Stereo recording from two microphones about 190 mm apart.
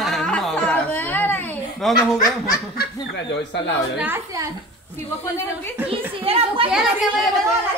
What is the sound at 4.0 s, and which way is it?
Speech, 10° right (ahead or behind).